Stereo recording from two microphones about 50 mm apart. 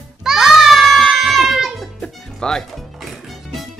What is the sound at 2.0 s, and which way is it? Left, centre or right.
Music, centre.